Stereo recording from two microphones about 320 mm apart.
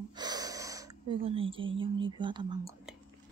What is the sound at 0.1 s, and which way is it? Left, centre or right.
Speech, centre.